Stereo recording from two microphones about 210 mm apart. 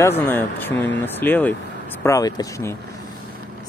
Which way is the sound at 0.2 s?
10° left (ahead or behind).